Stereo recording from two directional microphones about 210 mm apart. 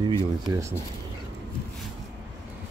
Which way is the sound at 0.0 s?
20° right (ahead or behind).